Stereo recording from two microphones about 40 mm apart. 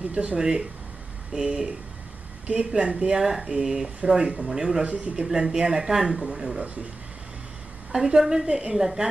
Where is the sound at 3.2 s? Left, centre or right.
Centre.